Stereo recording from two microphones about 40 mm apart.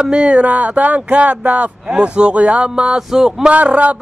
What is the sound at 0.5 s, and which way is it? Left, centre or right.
Speech, right.